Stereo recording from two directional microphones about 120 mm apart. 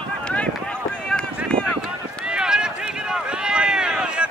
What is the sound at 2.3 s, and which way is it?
Run, 5° right (ahead or behind).